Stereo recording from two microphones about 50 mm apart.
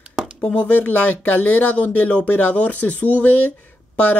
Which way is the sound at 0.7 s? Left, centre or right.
Left.